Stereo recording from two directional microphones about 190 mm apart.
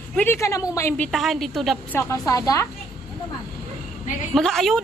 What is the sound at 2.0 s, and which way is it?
Speech, 15° left (ahead or behind).